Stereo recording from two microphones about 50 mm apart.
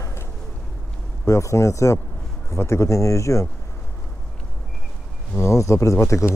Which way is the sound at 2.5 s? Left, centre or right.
Left.